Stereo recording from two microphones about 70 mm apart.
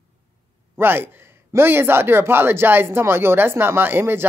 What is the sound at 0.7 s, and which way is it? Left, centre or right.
A woman's voice, right.